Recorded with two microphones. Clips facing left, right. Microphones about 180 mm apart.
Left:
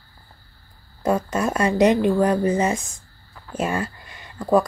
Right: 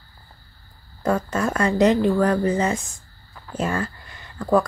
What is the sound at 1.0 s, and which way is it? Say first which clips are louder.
Speech: left 1 dB; 15° left (ahead or behind).